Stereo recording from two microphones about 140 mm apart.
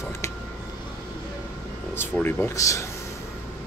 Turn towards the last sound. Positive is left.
turn(degrees=25)  # may be behind; listen again after turning